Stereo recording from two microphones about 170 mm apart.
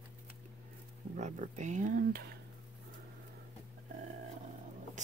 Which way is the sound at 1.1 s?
45° right (ahead or behind).